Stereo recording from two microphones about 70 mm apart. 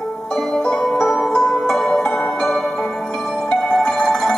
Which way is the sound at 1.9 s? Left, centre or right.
Left.